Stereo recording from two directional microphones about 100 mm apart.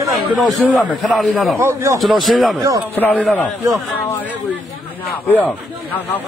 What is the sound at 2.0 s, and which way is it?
Speech, centre (ahead or behind).